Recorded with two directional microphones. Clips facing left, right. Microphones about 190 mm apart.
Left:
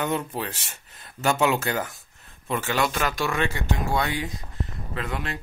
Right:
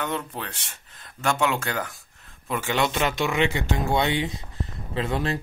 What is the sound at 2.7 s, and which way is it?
Speech, 25° right (ahead or behind).